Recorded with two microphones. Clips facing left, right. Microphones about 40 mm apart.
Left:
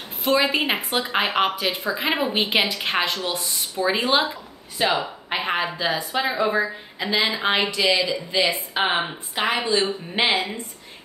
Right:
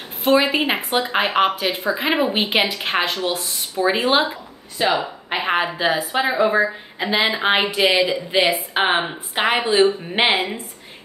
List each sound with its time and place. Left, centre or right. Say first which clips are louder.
0.2 s a woman's voice: right 4 dB; centre
0.5 s a woman's voice: right 3 dB; centre; by 10.5 s right